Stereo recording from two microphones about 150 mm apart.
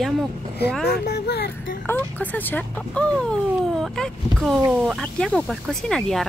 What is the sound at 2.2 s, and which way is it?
Speech, 10° left (ahead or behind).